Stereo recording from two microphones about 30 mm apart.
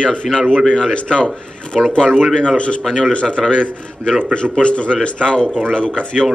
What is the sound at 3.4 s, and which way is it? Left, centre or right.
Speech, centre.